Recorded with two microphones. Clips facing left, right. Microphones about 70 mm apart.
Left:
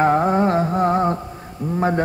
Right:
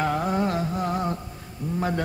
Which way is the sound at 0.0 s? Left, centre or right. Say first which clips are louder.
Left 8 dB; left.